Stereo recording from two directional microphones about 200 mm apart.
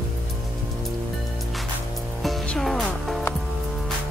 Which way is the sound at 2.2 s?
Centre (ahead or behind).